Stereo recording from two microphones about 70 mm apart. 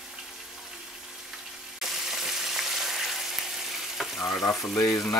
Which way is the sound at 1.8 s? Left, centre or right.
Centre.